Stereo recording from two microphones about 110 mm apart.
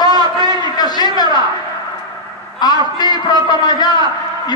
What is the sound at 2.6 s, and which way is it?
A man's voice, 40° left (ahead or behind).